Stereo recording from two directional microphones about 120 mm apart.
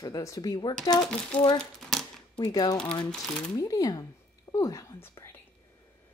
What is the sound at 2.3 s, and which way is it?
Speech, 35° left (ahead or behind).